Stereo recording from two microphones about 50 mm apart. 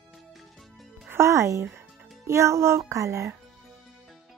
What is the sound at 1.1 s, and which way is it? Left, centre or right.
A child's voice, right.